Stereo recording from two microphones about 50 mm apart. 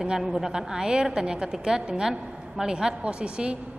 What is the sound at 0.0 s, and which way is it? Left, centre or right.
A woman's voice, centre.